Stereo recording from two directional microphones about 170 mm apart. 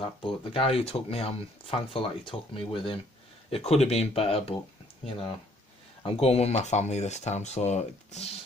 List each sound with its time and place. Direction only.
0.0 s speech: 30° left (ahead or behind)
6.0 s speech: 35° left (ahead or behind)